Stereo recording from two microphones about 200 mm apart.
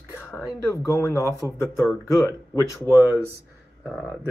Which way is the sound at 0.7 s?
15° left (ahead or behind).